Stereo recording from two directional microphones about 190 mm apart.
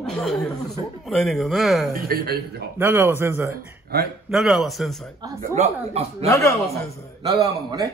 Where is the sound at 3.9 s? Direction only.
55° right (ahead or behind).